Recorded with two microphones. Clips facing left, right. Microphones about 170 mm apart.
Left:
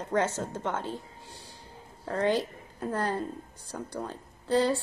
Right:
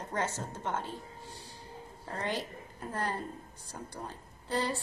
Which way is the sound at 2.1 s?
90° left.